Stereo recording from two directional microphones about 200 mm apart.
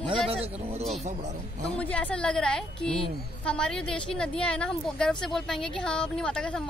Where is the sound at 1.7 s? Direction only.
5° left (ahead or behind).